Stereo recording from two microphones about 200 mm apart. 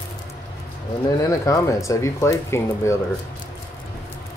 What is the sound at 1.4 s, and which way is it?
Speech, 15° left (ahead or behind).